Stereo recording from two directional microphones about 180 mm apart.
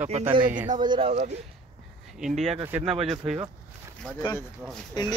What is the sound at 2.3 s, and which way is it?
Speech, 40° right (ahead or behind).